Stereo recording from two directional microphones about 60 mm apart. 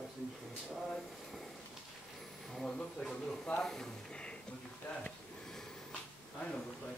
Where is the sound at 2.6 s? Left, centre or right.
Centre.